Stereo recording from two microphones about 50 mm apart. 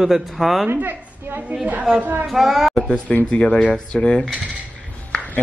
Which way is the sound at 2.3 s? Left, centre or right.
Centre.